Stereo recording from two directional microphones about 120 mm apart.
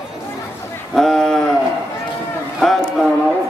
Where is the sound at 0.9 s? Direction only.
5° left (ahead or behind).